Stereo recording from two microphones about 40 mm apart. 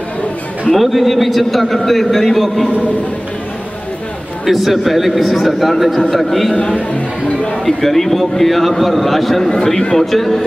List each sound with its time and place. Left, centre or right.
0.7 s a man's voice: centre
4.5 s a man's voice: centre
6.9 s speech: left
7.6 s a man's voice: centre
9.8 s speech: centre
10.1 s a man's voice: centre